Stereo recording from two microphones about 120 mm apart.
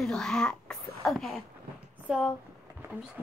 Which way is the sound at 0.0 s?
5° left (ahead or behind).